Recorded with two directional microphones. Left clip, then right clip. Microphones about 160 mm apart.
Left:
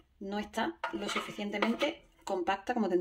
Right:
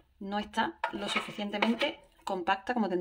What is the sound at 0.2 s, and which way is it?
Speech, 15° right (ahead or behind).